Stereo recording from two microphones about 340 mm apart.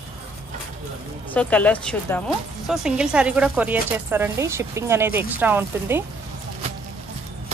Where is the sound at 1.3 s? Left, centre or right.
Centre.